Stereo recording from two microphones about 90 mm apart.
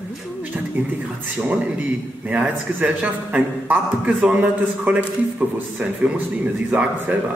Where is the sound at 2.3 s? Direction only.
15° right (ahead or behind).